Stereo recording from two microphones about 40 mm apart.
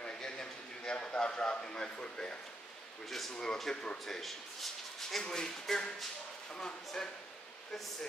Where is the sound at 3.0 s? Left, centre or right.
Centre.